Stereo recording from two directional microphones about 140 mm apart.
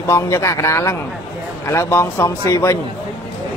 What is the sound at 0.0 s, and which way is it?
Speech, 20° left (ahead or behind).